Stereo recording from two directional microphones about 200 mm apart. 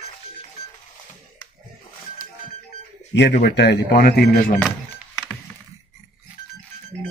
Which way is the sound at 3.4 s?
55° left (ahead or behind).